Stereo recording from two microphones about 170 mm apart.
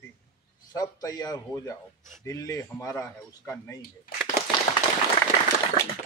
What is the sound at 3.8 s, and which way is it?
Speech, 60° left (ahead or behind).